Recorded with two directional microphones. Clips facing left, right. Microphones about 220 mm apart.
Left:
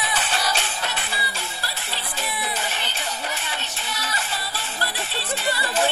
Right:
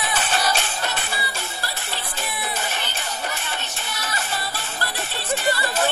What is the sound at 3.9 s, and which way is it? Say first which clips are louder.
Music: right 1 dB; 45° right (ahead or behind).